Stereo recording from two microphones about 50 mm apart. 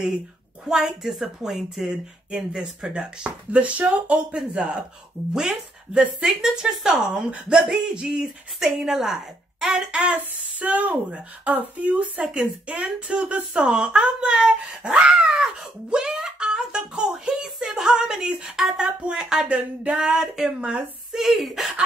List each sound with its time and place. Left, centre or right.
0.7 s speech: centre
2.9 s speech: centre
5.3 s speech: centre
7.2 s speech: right
7.5 s a woman's voice: centre
9.8 s speech: right; by 21.7 s centre